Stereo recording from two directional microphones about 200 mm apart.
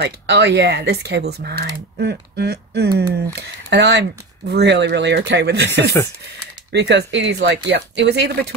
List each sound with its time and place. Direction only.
0.0 s speech: 60° right (ahead or behind)
6.7 s speech: 60° right (ahead or behind)